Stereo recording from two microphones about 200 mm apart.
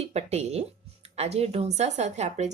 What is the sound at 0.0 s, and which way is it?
Speech, 35° right (ahead or behind).